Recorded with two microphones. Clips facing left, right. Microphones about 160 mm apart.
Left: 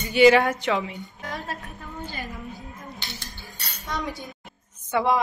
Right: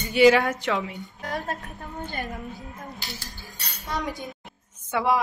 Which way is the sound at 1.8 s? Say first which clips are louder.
Right 2 dB; 45° right (ahead or behind).